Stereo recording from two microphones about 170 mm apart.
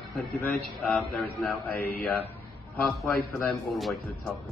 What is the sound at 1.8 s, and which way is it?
Mantra, 65° left (ahead or behind).